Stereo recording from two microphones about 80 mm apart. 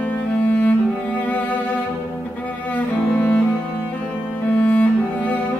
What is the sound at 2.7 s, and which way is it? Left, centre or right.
Cello, centre.